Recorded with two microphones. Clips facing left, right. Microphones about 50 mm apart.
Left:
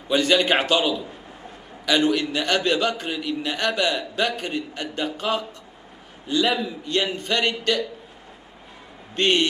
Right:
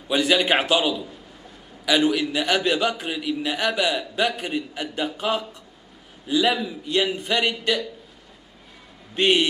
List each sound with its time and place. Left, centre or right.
0.1 s a man's voice: centre
9.1 s a man's voice: centre